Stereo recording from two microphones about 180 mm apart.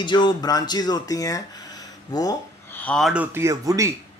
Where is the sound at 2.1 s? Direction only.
20° left (ahead or behind).